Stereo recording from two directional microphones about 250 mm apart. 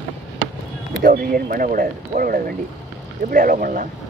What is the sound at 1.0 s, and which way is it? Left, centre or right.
Speech, right.